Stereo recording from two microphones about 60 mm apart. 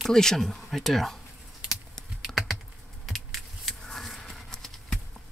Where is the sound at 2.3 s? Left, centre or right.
Centre.